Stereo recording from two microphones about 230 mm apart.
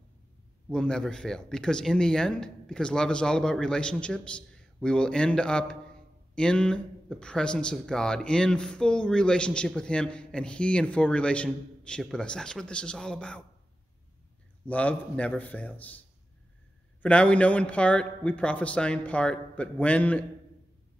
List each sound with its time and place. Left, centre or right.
0.7 s speech: centre
14.7 s a man's voice: centre
17.0 s speech: centre